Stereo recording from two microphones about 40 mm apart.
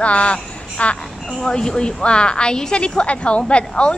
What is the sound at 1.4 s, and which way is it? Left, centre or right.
A woman's voice, centre.